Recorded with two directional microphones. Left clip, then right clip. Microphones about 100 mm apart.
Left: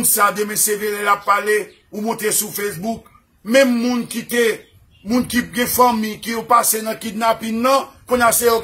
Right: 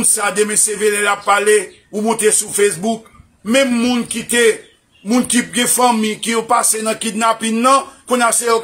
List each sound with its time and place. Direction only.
0.2 s speech: 20° right (ahead or behind)